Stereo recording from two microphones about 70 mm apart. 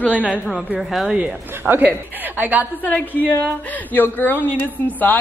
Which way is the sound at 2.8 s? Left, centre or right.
Left.